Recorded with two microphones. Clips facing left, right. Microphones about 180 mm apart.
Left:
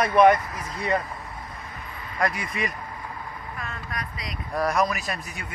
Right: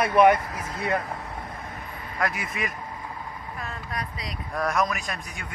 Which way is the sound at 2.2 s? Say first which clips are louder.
Left 2 dB; centre (ahead or behind).